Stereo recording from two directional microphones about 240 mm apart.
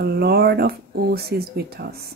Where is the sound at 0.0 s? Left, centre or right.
Right.